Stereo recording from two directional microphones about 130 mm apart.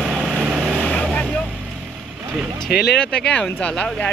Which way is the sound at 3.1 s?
5° left (ahead or behind).